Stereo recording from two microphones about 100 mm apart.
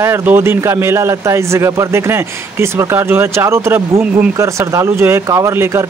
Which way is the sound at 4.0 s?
15° right (ahead or behind).